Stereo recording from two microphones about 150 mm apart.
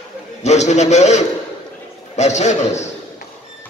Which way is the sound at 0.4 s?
50° left (ahead or behind).